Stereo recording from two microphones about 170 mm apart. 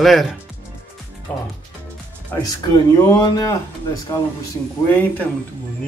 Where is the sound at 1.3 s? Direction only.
10° left (ahead or behind).